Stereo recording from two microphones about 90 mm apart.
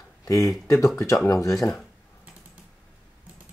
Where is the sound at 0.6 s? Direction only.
35° left (ahead or behind).